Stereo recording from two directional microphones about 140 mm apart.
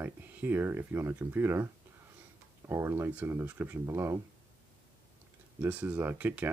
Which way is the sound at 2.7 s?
20° right (ahead or behind).